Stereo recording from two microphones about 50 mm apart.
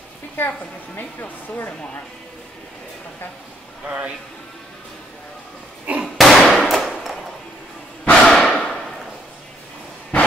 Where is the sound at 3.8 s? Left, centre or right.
Right.